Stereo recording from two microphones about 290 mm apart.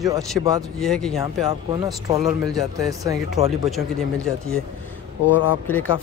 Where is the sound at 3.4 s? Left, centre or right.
Right.